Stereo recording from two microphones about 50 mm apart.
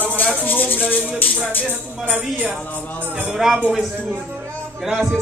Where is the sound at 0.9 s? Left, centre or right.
Right.